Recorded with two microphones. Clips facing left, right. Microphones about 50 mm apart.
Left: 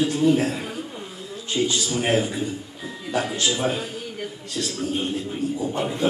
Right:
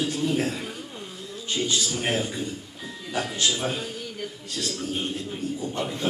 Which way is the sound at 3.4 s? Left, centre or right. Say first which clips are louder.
Left 3 dB; centre.